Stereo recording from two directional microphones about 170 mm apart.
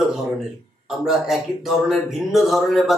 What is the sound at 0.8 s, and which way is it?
Speech, centre (ahead or behind).